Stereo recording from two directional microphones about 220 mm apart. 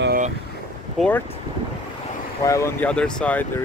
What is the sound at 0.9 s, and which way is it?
Speech, 5° left (ahead or behind).